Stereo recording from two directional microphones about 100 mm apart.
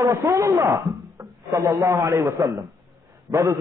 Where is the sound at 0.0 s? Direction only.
30° right (ahead or behind).